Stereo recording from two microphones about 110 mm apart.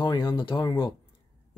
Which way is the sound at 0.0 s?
40° left (ahead or behind).